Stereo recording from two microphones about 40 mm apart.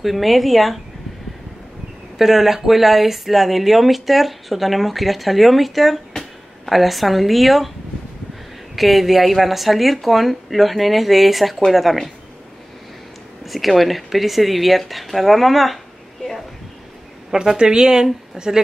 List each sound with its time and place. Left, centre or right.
0.0 s speech: centre
2.1 s speech: centre
8.7 s speech: centre
13.5 s speech: centre
17.3 s speech: centre